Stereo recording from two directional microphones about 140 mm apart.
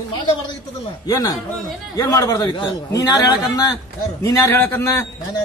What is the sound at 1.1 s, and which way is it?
A man's voice, 25° left (ahead or behind).